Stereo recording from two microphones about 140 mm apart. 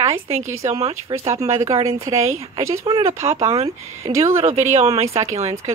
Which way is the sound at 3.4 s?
45° right (ahead or behind).